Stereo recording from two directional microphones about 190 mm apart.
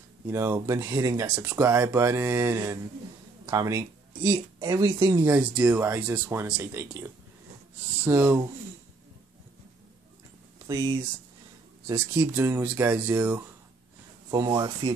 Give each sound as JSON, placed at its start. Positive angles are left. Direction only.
{"t": 0.3, "sound": "speech", "side_deg": -15}
{"t": 10.7, "sound": "speech", "side_deg": -20}
{"t": 11.9, "sound": "speech", "side_deg": -10}
{"t": 14.3, "sound": "speech", "side_deg": -20}